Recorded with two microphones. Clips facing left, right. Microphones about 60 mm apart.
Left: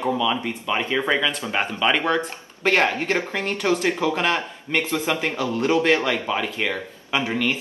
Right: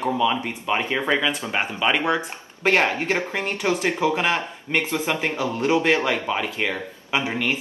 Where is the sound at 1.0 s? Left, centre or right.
Centre.